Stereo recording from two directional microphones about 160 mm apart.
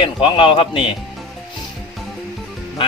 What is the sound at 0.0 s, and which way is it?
Speech, 35° left (ahead or behind).